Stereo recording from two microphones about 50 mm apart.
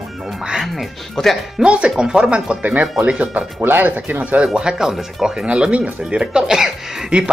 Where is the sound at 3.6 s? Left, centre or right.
Right.